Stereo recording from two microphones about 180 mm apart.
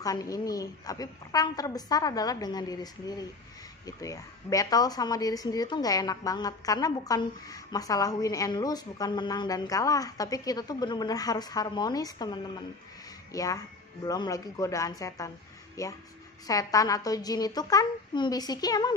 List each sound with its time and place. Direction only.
0.0 s a woman's voice: 20° left (ahead or behind)